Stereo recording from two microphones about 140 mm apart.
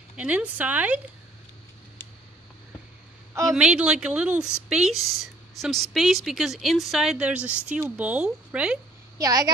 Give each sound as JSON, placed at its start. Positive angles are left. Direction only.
{"t": 0.1, "sound": "a woman's voice", "side_deg": -10}
{"t": 3.5, "sound": "a woman's voice", "side_deg": -5}
{"t": 9.2, "sound": "a woman's voice", "side_deg": -25}